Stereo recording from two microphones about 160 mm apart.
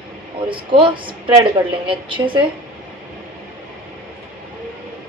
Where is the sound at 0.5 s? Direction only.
30° right (ahead or behind).